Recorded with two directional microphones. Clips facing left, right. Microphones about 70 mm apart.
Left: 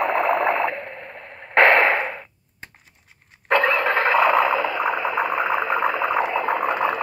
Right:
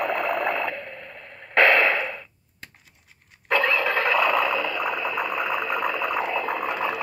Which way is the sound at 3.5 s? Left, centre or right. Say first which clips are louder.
Left 3 dB; left.